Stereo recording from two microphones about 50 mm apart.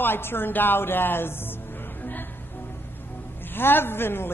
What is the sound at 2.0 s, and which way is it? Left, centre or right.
Music, left.